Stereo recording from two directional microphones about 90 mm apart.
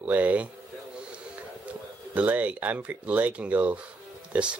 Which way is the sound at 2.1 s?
15° right (ahead or behind).